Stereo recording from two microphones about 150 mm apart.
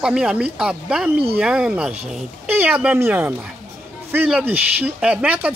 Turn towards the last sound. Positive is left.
turn(degrees=-10)  # may be behind; listen again after turning